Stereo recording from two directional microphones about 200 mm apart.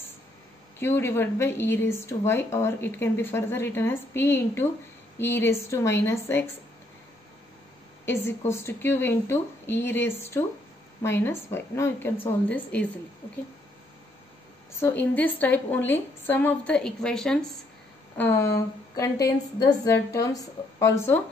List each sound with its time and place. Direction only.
0.7 s a woman's voice: 10° left (ahead or behind)
8.0 s a woman's voice: 10° left (ahead or behind)
14.8 s a woman's voice: 10° left (ahead or behind)